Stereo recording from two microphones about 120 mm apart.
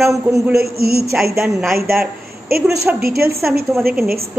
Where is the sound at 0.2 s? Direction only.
25° right (ahead or behind).